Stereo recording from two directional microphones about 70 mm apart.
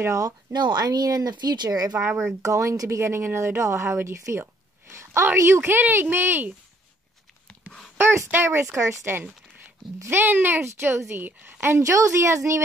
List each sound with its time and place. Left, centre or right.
0.0 s a woman's voice: right
0.5 s speech: right
2.2 s speech: right
8.3 s a woman's voice: right
11.6 s a woman's voice: right